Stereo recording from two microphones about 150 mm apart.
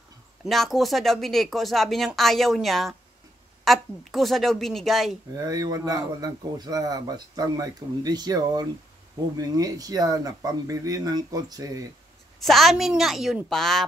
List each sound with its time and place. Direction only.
0.5 s speech: centre (ahead or behind)
5.3 s speech: 25° right (ahead or behind)
12.4 s speech: centre (ahead or behind)